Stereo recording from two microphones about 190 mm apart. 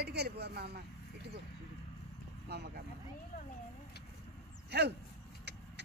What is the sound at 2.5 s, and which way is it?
Speech, 60° right (ahead or behind).